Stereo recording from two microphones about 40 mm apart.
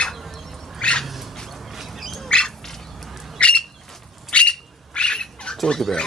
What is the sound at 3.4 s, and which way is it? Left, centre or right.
Bird, left.